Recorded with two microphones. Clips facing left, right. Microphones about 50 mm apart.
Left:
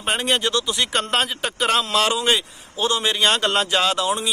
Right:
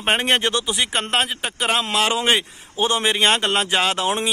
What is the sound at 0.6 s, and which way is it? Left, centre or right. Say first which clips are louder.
Speech: even; centre.